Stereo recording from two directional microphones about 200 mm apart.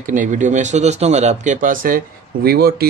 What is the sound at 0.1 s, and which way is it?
Speech, 40° right (ahead or behind).